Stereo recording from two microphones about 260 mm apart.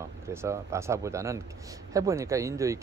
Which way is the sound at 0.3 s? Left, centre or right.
Centre.